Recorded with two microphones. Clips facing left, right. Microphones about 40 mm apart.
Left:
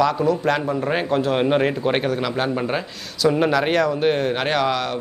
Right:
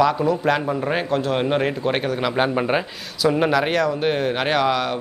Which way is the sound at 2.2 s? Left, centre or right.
Centre.